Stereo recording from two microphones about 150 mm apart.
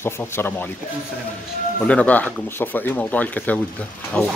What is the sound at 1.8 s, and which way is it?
Speech, 10° left (ahead or behind).